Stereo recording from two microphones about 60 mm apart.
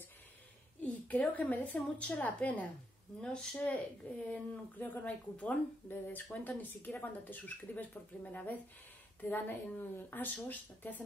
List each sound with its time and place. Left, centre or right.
1.0 s a woman's voice: left